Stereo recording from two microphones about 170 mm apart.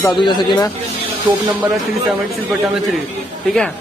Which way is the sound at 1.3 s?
25° right (ahead or behind).